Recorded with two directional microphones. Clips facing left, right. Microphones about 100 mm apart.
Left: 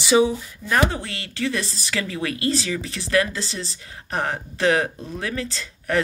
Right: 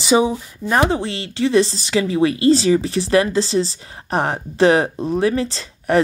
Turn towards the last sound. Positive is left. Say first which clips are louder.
# right 6 dB
turn(degrees=-30)  # may be behind; listen again after turning